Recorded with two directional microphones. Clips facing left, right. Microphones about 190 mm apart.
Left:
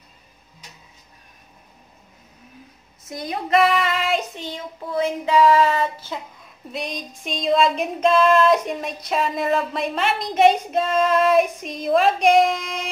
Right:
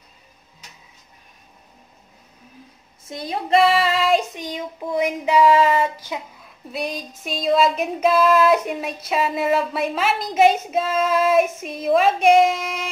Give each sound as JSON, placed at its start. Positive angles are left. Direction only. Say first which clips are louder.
{"t": 3.1, "sound": "child singing", "louder": "right 1 dB", "side_deg": -25}
{"t": 4.4, "sound": "a sound", "louder": "right 3 dB", "side_deg": -15}
{"t": 6.7, "sound": "a woman's voice", "louder": "right 2 dB", "side_deg": -5}